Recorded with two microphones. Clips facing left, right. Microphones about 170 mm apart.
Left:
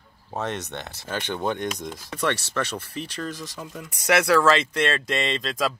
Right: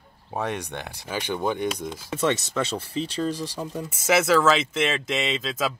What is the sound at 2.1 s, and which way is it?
Speech, 20° right (ahead or behind).